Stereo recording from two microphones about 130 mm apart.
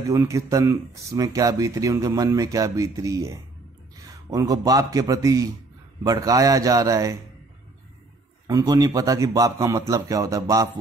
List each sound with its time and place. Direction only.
0.1 s a man's voice: 25° right (ahead or behind)
8.5 s speech: 30° right (ahead or behind)